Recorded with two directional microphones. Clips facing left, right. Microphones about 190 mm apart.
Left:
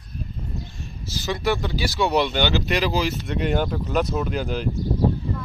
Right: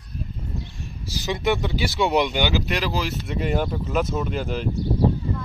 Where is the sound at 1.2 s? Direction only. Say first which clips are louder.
Right 1 dB; 15° right (ahead or behind).